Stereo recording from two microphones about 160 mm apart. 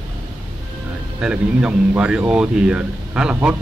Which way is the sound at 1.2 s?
5° right (ahead or behind).